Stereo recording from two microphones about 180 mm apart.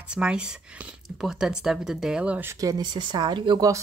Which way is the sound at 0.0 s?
5° right (ahead or behind).